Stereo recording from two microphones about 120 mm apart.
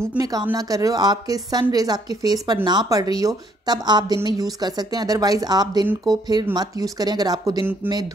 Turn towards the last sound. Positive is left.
turn(degrees=-35)  # may be behind; listen again after turning